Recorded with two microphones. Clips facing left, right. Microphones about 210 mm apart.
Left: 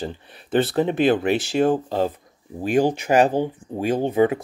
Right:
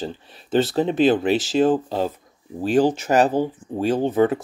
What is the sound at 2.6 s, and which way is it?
Speech, 10° left (ahead or behind).